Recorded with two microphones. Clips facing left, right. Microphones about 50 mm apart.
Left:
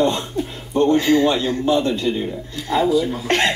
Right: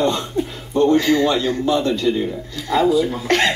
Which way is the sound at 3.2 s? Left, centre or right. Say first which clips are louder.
Right 1 dB; left.